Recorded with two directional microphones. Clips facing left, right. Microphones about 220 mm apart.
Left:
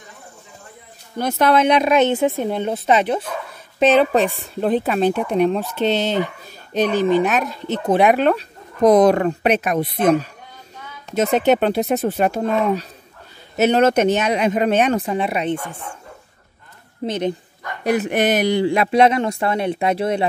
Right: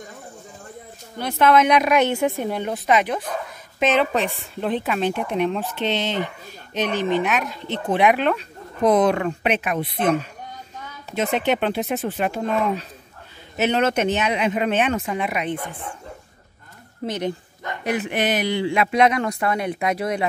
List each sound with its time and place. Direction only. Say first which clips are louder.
1.1 s a woman's voice: left 1 dB; 40° left (ahead or behind)
11.1 s speech: left 5 dB; 40° left (ahead or behind)
17.0 s a woman's voice: left 4 dB; 20° left (ahead or behind)
17.8 s speech: left 5 dB; 40° left (ahead or behind)